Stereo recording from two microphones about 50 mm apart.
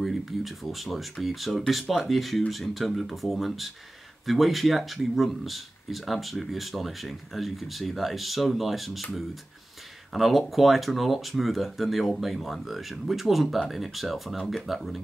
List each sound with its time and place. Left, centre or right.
0.0 s speech: centre
10.1 s speech: centre